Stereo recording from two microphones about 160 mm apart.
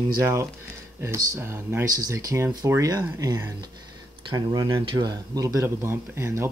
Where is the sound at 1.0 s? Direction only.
15° right (ahead or behind).